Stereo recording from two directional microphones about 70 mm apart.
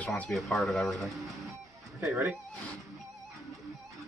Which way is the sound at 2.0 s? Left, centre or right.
Right.